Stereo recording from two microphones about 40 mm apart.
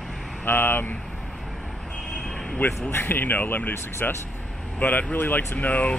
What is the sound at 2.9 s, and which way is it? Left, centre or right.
Speech, left.